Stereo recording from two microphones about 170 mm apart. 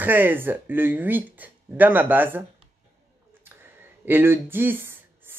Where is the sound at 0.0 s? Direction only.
10° right (ahead or behind).